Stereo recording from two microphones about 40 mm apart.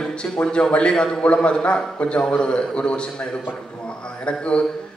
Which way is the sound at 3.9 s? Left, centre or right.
Left.